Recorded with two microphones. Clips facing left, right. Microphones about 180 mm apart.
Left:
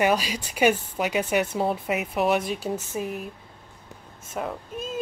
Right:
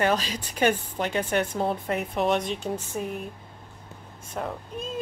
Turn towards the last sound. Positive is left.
turn(degrees=5)  # may be behind; listen again after turning